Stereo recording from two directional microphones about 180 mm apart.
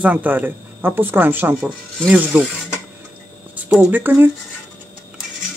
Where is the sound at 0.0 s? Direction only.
10° right (ahead or behind).